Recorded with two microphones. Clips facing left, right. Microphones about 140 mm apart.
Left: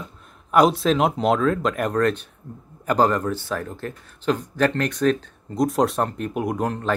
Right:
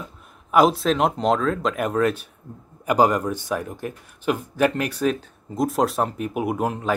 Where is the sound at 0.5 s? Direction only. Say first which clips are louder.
Even; centre (ahead or behind).